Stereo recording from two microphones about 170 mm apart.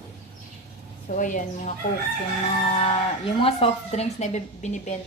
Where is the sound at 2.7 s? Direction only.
35° left (ahead or behind).